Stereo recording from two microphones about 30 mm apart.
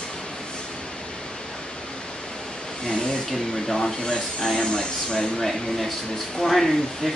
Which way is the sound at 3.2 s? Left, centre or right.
Centre.